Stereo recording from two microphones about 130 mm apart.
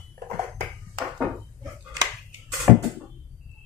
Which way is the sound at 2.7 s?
10° right (ahead or behind).